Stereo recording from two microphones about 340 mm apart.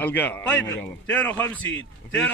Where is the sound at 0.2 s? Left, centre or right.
Centre.